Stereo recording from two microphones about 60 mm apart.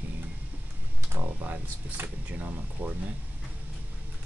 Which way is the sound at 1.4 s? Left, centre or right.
Right.